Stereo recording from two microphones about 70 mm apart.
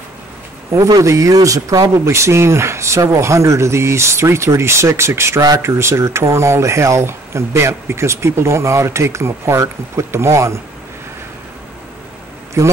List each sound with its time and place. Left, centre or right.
0.7 s speech: right
2.0 s speech: right
12.6 s speech: right